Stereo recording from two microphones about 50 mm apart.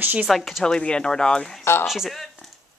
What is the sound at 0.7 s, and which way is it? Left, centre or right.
Speech, centre.